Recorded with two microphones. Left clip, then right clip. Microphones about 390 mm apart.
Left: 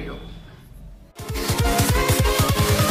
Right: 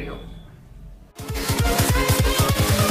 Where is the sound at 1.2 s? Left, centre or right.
Centre.